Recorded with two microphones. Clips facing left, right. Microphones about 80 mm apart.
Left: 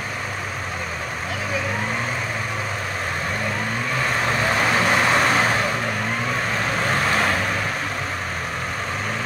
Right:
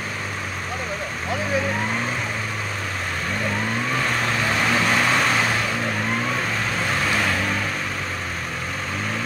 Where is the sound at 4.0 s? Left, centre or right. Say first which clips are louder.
Left 1 dB; centre.